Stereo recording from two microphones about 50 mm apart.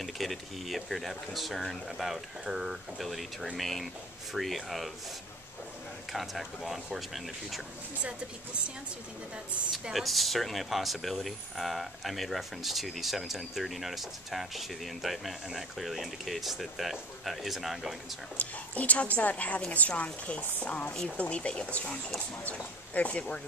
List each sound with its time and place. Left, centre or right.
0.0 s speech: centre
6.1 s speech: centre
9.9 s speech: centre
18.4 s a woman's voice: left
22.9 s a woman's voice: left